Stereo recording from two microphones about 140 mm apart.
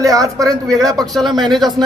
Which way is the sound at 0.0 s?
25° right (ahead or behind).